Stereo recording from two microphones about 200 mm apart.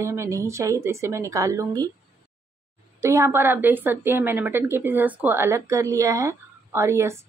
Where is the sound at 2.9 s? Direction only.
15° right (ahead or behind).